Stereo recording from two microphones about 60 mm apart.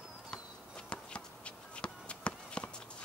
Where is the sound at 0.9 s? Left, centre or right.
Centre.